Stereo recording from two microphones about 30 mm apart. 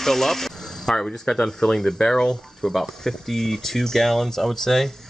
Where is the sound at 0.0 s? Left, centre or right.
Centre.